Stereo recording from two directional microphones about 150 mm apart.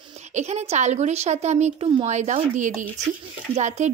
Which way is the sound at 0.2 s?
50° right (ahead or behind).